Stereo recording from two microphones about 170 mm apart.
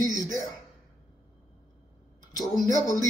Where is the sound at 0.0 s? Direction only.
20° left (ahead or behind).